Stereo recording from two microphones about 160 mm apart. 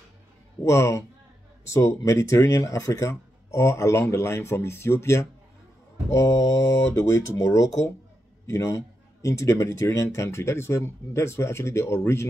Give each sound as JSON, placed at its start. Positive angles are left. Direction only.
{"t": 0.7, "sound": "a man's voice", "side_deg": 20}